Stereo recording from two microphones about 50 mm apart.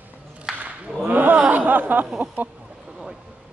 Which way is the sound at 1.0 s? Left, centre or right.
Right.